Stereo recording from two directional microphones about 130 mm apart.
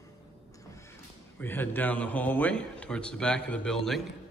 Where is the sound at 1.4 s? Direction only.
15° left (ahead or behind).